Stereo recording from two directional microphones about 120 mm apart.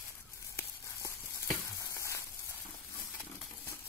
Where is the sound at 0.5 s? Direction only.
25° left (ahead or behind).